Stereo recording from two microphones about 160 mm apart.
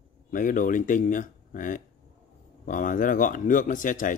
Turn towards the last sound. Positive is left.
turn(degrees=55)  # may be behind; listen again after turning